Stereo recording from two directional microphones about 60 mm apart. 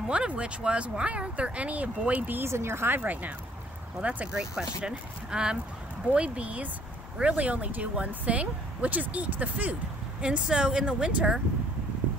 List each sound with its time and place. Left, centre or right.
0.1 s speech: centre
2.4 s speech: right
3.0 s speech: right
4.4 s speech: centre